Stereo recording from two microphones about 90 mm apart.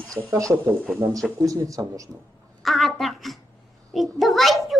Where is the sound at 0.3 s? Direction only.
35° right (ahead or behind).